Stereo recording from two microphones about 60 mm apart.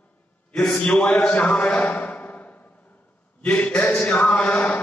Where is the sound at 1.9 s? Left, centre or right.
Left.